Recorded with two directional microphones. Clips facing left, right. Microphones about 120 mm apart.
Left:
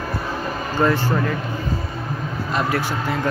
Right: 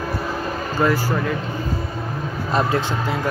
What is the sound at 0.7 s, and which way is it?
Speech, 5° right (ahead or behind).